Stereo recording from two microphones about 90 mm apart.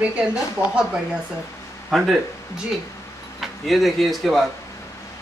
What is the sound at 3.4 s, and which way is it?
Speech, centre (ahead or behind).